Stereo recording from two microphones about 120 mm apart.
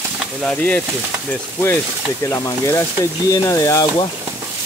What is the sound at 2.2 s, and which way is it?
Speech, 25° left (ahead or behind).